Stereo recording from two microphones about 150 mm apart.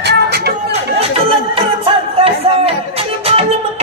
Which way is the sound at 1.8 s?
40° right (ahead or behind).